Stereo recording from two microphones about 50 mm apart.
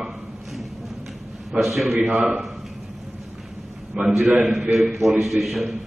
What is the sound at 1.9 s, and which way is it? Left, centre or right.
Speech, right.